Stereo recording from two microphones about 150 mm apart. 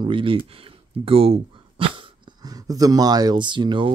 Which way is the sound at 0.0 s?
35° right (ahead or behind).